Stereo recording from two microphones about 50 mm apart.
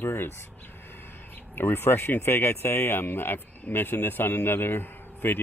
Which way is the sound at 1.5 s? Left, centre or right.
Left.